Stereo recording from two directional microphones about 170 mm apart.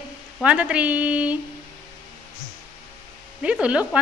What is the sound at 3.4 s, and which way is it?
Speech, 5° right (ahead or behind).